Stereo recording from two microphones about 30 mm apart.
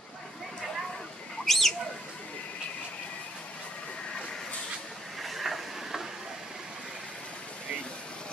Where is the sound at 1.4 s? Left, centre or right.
Centre.